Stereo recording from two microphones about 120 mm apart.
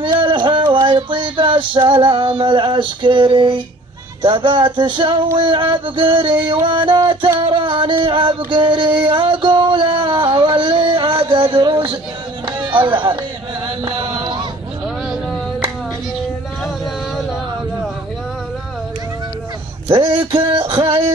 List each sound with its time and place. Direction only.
0.0 s a sound: 45° right (ahead or behind)
0.8 s male singing: 40° right (ahead or behind)
4.2 s music: 40° right (ahead or behind)
12.4 s a sound: 45° right (ahead or behind)
13.7 s chant: 45° right (ahead or behind)
19.9 s music: 40° right (ahead or behind)